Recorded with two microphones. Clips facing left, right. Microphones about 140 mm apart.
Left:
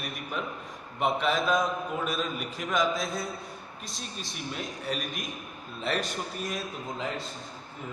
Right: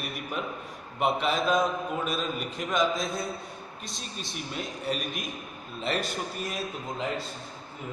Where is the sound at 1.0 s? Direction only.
Centre (ahead or behind).